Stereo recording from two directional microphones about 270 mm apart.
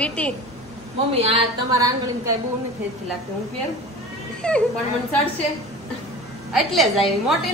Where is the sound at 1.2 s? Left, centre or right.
Centre.